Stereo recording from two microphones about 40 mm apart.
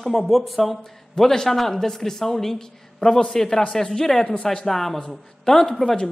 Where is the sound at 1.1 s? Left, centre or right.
Centre.